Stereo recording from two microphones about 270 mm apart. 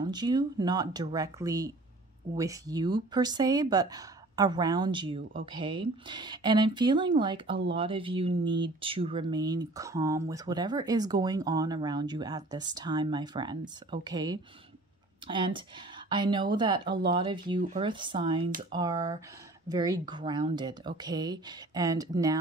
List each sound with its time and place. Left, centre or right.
0.0 s speech: centre
17.6 s speech: right
17.8 s speech: centre